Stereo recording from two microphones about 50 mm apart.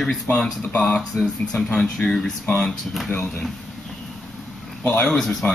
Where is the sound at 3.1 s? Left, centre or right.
Left.